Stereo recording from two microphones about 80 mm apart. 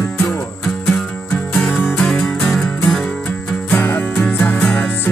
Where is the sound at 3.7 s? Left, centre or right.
Left.